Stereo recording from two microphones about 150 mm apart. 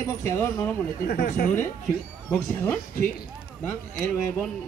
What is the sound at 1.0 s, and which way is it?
Speech, 90° left.